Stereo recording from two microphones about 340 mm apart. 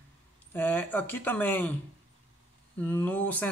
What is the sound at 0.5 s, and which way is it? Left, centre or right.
Speech, centre.